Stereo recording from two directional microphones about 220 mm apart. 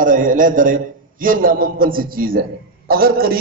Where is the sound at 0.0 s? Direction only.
40° right (ahead or behind).